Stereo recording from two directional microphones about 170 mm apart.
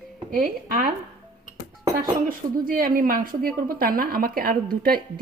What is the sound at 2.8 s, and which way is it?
A woman's voice, 55° right (ahead or behind).